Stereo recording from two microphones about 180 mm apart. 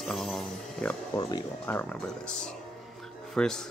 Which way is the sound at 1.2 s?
25° left (ahead or behind).